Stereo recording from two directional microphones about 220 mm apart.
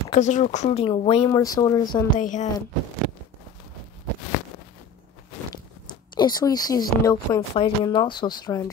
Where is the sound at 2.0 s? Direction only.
35° left (ahead or behind).